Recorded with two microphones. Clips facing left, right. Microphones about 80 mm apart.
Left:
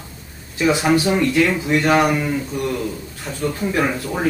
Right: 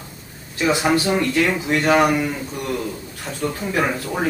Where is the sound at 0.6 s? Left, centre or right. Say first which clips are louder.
Left 2 dB; centre.